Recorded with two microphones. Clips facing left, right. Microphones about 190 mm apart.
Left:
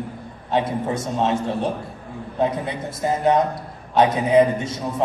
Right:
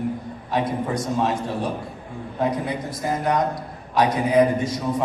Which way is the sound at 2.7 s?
25° left (ahead or behind).